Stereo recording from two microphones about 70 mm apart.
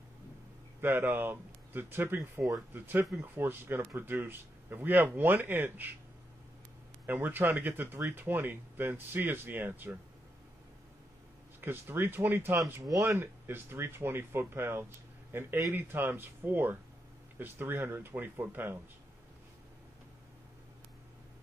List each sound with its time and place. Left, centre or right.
0.7 s speech: right
7.1 s speech: right
11.6 s speech: right